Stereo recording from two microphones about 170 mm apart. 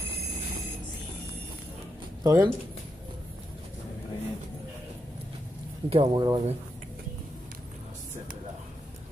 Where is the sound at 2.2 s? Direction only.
20° right (ahead or behind).